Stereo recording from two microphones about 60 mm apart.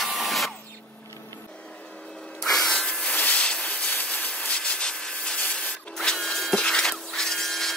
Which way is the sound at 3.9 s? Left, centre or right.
Left.